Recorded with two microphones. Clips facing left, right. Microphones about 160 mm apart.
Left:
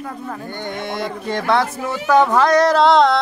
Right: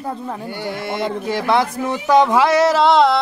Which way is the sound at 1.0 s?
5° right (ahead or behind).